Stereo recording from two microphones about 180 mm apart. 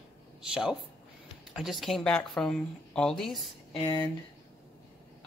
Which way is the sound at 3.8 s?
25° left (ahead or behind).